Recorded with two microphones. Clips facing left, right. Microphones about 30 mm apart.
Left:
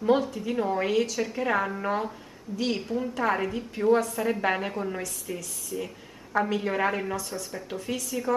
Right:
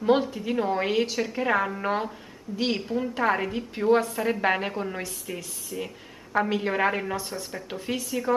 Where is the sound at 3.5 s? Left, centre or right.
Right.